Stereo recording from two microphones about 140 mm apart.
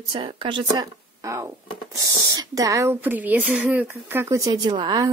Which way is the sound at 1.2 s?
20° right (ahead or behind).